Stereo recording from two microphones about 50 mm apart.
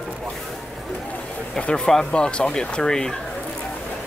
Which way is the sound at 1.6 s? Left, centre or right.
Centre.